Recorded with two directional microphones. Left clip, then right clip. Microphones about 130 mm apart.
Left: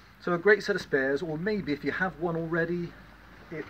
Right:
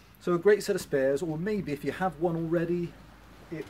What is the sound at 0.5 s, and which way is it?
Speech, 30° right (ahead or behind).